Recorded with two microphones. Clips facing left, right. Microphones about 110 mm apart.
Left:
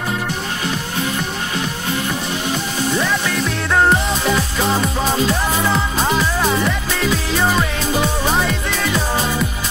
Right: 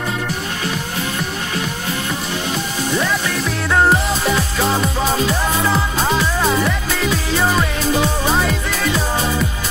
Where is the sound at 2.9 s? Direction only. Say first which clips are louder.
Right 1 dB; centre (ahead or behind).